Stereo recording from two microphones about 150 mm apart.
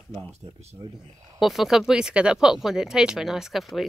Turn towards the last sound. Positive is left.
turn(degrees=0)  # may be behind; listen again after turning